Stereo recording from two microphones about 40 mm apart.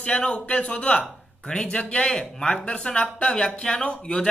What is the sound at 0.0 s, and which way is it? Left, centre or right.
Speech, left.